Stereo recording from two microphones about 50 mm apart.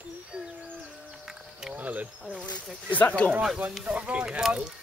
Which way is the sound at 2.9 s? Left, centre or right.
Left.